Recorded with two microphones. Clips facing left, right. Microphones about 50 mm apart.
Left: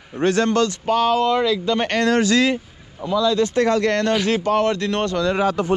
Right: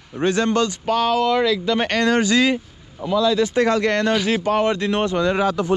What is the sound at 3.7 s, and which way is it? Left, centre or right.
Speech, right.